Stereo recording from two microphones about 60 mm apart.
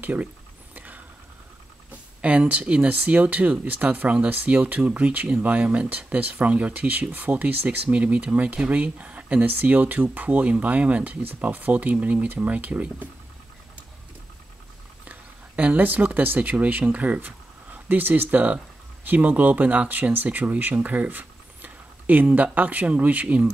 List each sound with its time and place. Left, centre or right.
0.0 s speech: right
0.7 s vehicle: right
2.2 s speech: right
15.0 s speech: right